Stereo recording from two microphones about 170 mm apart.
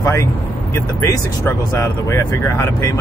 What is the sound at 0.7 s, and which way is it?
Speech, 15° left (ahead or behind).